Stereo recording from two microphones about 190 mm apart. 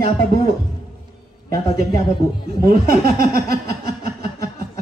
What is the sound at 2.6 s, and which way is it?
Speech, 50° right (ahead or behind).